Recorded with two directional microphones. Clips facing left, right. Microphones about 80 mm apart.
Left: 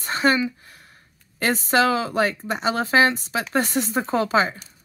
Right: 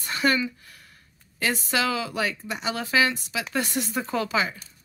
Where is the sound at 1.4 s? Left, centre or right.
Left.